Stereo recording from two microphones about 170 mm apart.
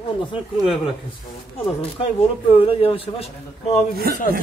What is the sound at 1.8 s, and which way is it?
Speech, 35° left (ahead or behind).